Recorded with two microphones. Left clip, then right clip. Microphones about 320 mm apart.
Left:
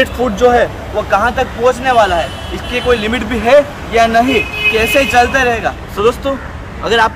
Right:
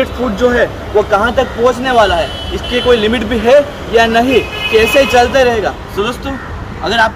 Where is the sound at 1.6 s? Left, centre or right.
Left.